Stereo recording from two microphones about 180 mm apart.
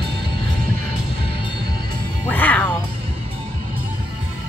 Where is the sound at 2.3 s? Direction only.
10° left (ahead or behind).